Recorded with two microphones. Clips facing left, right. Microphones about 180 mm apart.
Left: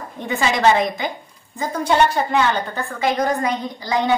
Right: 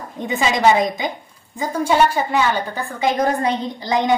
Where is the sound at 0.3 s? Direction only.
15° right (ahead or behind).